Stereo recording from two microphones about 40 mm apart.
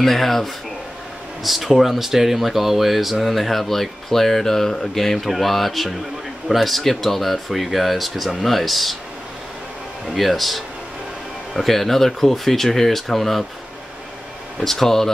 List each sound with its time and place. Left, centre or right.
0.0 s speech: centre
10.0 s speech: centre
14.6 s speech: centre